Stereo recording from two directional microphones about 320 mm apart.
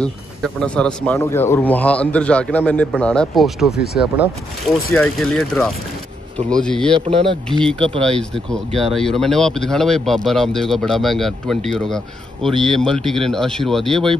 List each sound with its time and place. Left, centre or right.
0.0 s speech: centre
3.7 s speech: left
4.9 s speech: centre
6.9 s speech: centre
7.4 s speech: centre